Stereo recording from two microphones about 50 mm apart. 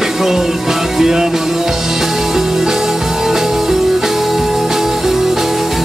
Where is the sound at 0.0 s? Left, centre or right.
Centre.